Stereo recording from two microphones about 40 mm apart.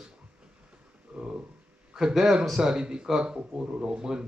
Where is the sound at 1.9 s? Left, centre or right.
Centre.